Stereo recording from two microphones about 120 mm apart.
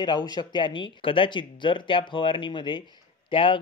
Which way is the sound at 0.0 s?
35° left (ahead or behind).